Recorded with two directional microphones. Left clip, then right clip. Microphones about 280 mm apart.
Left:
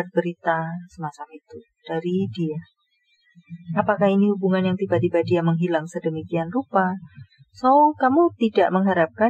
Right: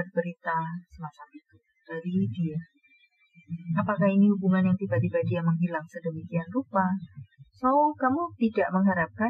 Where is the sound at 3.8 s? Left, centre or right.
Left.